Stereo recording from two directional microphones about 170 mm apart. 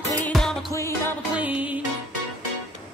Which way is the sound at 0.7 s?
15° left (ahead or behind).